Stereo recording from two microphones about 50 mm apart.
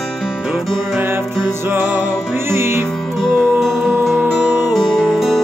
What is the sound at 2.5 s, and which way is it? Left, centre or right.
Music, right.